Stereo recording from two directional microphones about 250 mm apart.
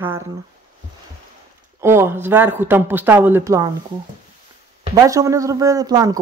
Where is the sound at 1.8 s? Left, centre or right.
Centre.